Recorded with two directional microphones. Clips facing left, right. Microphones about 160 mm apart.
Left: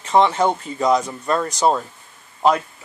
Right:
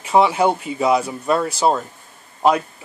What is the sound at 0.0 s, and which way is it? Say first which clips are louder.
Speech: right 1 dB; 10° right (ahead or behind).